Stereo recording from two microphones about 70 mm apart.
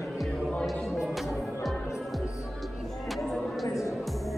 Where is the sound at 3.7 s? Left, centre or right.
Left.